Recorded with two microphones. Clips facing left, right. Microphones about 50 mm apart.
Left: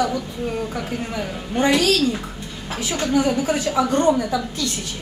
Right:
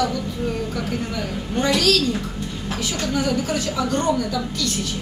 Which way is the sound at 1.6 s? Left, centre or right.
Left.